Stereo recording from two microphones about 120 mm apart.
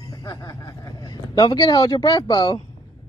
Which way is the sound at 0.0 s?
30° left (ahead or behind).